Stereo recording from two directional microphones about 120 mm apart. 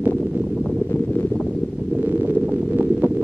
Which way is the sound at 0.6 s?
10° left (ahead or behind).